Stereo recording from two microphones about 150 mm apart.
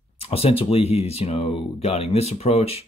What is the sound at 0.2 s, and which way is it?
Speech, 40° left (ahead or behind).